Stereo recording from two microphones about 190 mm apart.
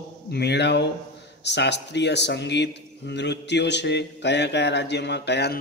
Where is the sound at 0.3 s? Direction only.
60° left (ahead or behind).